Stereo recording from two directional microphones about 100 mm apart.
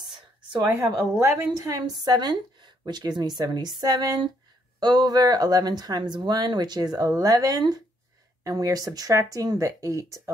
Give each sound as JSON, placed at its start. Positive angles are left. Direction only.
{"t": 0.1, "sound": "a sound", "side_deg": -50}
{"t": 0.7, "sound": "a woman's voice", "side_deg": -20}
{"t": 1.6, "sound": "a woman's voice", "side_deg": -40}